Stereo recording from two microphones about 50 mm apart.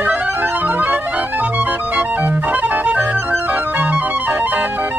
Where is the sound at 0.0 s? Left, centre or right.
Right.